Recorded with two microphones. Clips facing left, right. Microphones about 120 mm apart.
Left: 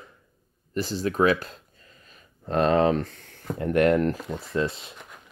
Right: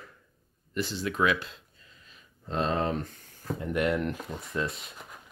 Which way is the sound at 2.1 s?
55° left (ahead or behind).